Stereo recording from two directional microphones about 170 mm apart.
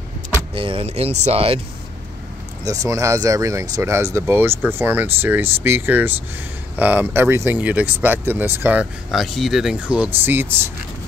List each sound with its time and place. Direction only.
0.6 s speech: 30° right (ahead or behind)
2.6 s speech: 20° right (ahead or behind)